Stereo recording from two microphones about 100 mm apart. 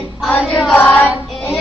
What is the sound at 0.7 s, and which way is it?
Child singing, 20° left (ahead or behind).